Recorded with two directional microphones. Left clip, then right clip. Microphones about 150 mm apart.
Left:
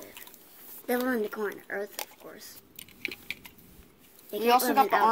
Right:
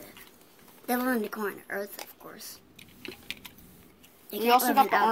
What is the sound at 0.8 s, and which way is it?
Speech, 70° right (ahead or behind).